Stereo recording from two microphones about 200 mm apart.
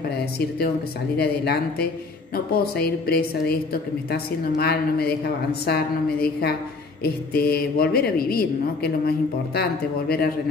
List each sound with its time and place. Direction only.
1.1 s a woman's voice: 50° left (ahead or behind)
7.0 s a woman's voice: 50° left (ahead or behind)